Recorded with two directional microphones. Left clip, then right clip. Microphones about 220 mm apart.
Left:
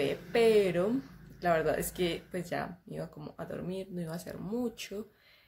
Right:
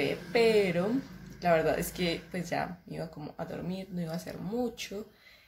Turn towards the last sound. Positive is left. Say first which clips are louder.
# right 2 dB
turn(degrees=25)  # may be behind; listen again after turning